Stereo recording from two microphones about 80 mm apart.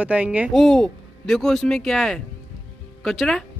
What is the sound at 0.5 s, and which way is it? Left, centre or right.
Speech, centre.